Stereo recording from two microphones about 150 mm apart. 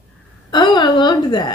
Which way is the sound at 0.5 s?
30° left (ahead or behind).